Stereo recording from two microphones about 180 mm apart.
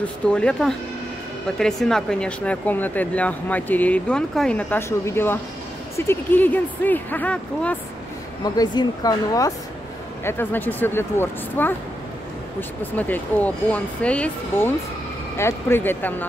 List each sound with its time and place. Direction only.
0.0 s speech: 5° left (ahead or behind)
8.5 s speech: 20° left (ahead or behind)